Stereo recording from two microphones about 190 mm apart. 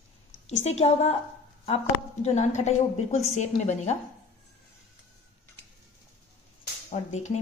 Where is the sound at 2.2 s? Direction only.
40° left (ahead or behind).